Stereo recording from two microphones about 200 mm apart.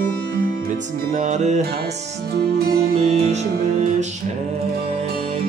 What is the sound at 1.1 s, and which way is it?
Music, 35° right (ahead or behind).